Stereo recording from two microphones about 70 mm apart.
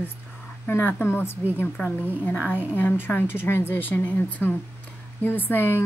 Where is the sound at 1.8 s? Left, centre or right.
Centre.